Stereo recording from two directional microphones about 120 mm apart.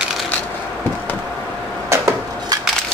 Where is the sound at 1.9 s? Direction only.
25° right (ahead or behind).